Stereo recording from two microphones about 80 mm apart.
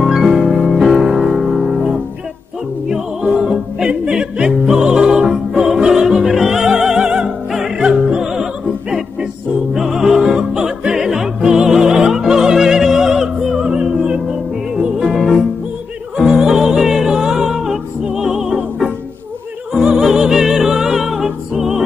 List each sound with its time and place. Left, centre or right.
0.0 s music: centre
7.9 s opera: centre
9.8 s opera: centre
14.8 s music: centre
15.1 s music: centre
16.2 s music: centre